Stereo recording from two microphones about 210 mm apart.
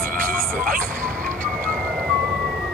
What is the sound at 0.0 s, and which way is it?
Music, 40° right (ahead or behind).